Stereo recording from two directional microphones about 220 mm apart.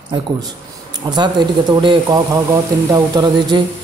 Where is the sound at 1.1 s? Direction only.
20° right (ahead or behind).